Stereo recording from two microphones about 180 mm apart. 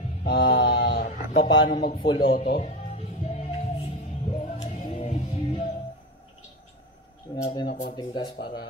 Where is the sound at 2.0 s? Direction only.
30° left (ahead or behind).